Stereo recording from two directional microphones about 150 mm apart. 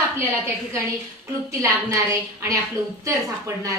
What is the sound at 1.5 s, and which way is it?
Speech, 20° right (ahead or behind).